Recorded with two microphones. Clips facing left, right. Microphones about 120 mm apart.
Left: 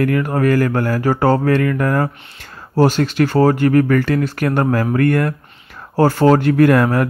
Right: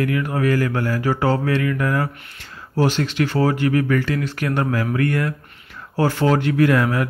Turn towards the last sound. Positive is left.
turn(degrees=45)  # may be behind; listen again after turning